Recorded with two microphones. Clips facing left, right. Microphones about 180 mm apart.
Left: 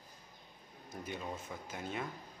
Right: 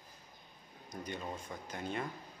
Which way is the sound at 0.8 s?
5° left (ahead or behind).